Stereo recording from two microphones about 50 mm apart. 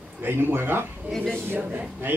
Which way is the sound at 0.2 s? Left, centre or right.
Right.